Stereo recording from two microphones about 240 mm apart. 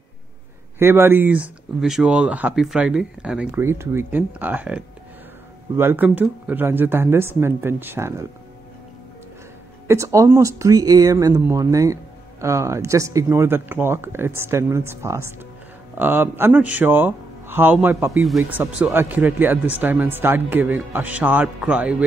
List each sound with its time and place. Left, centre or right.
0.7 s speech: centre
9.8 s speech: centre